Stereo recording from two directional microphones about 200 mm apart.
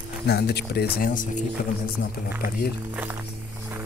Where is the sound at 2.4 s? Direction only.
50° left (ahead or behind).